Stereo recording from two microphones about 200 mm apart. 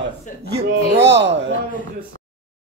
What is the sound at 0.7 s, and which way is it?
Speech, 60° right (ahead or behind).